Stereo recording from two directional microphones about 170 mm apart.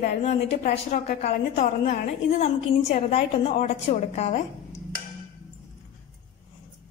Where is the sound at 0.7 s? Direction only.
50° left (ahead or behind).